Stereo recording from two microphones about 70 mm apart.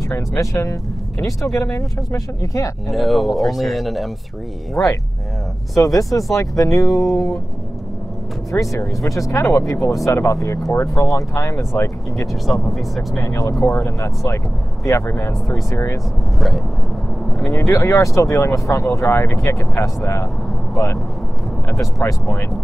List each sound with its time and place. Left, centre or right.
0.1 s speech: left
2.9 s speech: centre
5.9 s speech: left
8.5 s speech: left
12.6 s speech: centre
13.2 s speech: left
15.0 s speech: left
16.3 s speech: centre
17.5 s speech: left